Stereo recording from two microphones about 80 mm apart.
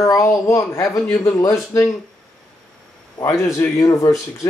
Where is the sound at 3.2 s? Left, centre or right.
Left.